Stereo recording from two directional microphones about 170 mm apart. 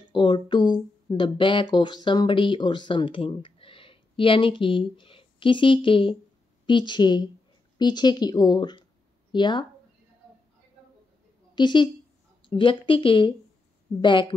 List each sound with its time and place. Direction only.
0.0 s speech: 30° left (ahead or behind)
11.5 s a woman's voice: 25° left (ahead or behind)